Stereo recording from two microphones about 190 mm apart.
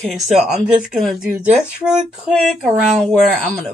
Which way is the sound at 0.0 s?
Centre (ahead or behind).